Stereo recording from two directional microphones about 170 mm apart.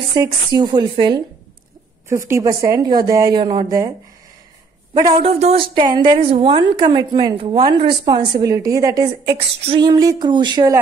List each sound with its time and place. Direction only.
0.1 s a woman's voice: 25° right (ahead or behind)
2.0 s a woman's voice: 15° right (ahead or behind)
5.1 s a man's voice: 35° right (ahead or behind)